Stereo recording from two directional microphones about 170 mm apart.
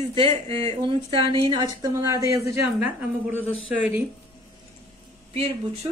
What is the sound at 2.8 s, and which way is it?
A woman's voice, 5° right (ahead or behind).